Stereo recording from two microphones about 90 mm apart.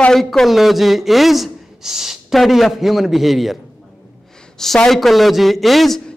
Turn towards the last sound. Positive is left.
turn(degrees=0)  # may be behind; listen again after turning